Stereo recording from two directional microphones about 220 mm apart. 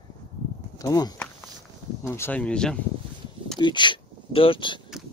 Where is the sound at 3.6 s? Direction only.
20° left (ahead or behind).